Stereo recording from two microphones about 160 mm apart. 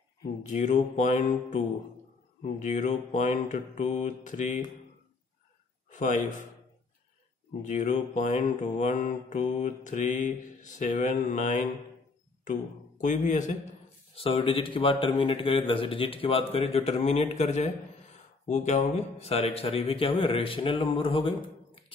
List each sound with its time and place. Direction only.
0.5 s mantra: 50° left (ahead or behind)
5.9 s a man's voice: 50° left (ahead or behind)
7.6 s mantra: 50° left (ahead or behind)
12.4 s speech: 50° left (ahead or behind)
14.1 s speech: 35° left (ahead or behind)